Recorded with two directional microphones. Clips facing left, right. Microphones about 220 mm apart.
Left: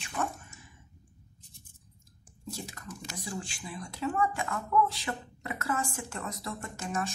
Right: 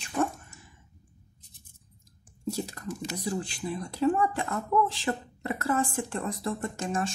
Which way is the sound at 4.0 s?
30° right (ahead or behind).